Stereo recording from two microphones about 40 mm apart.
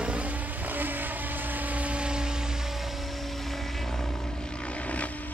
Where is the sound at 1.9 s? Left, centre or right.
Right.